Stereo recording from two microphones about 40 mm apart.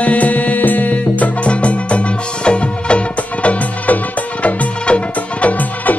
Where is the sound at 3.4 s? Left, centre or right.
Left.